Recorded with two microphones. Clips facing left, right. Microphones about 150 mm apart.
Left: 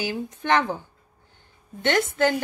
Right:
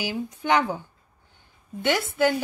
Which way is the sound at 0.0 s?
10° right (ahead or behind).